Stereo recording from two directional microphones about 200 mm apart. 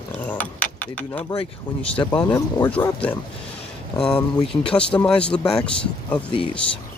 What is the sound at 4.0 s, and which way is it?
Speech, 5° left (ahead or behind).